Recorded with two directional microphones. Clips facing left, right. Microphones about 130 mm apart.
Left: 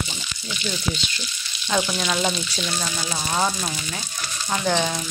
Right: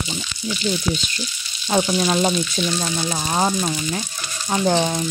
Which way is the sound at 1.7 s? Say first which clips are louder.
Right 5 dB; 25° right (ahead or behind).